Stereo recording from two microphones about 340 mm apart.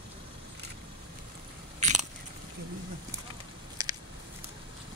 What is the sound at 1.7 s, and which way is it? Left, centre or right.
Biting, right.